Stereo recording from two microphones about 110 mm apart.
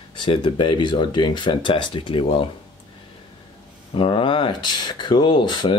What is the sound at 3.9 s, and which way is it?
Speech, 55° left (ahead or behind).